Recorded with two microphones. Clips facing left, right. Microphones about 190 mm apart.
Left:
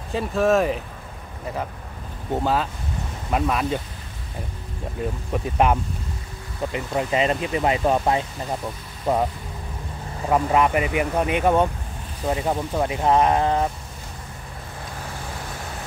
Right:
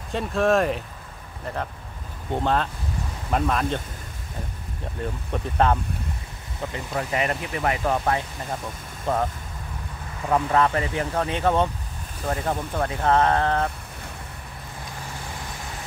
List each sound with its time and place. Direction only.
0.1 s speech: centre (ahead or behind)
2.3 s speech: 5° left (ahead or behind)
5.3 s speech: 15° left (ahead or behind)
10.3 s speech: 15° left (ahead or behind)